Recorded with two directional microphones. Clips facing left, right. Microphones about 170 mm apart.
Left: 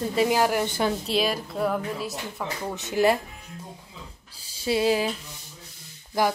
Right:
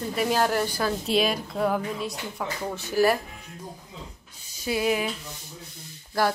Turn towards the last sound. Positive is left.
turn(degrees=15)  # may be behind; listen again after turning